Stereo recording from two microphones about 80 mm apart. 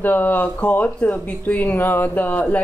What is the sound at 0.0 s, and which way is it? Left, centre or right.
Speech, left.